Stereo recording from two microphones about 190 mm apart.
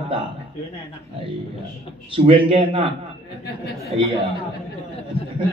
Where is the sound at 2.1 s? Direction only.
30° right (ahead or behind).